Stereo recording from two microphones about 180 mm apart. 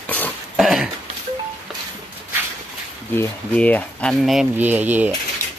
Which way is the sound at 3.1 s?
10° left (ahead or behind).